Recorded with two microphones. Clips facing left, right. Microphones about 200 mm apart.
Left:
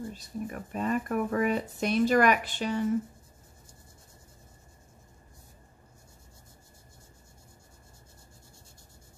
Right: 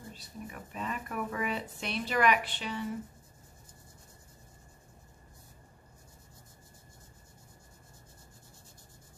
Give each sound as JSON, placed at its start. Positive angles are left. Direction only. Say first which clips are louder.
{"t": 0.2, "sound": "speech", "louder": "left 8 dB", "side_deg": 45}